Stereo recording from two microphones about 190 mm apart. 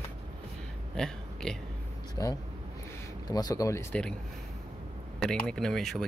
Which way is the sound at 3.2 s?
20° left (ahead or behind).